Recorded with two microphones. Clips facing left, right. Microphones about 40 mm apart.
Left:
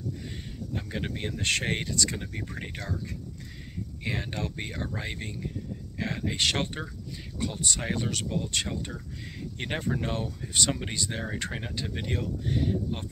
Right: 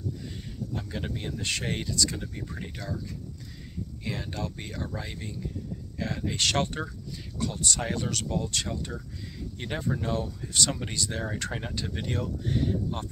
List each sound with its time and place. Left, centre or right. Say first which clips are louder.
0.9 s speech: left 3 dB; left
1.4 s speech: left 4 dB; left
4.0 s speech: left 2 dB; left
6.3 s speech: right 2 dB; centre
8.5 s speech: even; left
11.5 s speech: right 1 dB; centre